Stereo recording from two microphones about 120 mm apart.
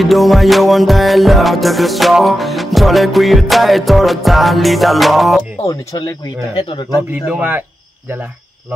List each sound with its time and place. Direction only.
0.0 s music: centre (ahead or behind)
5.6 s speech: 30° left (ahead or behind)
6.6 s speech: 45° left (ahead or behind)
7.2 s speech: 15° right (ahead or behind)